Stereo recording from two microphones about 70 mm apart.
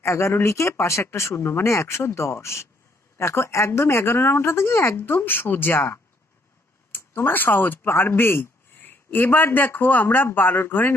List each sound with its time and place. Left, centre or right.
0.0 s speech: left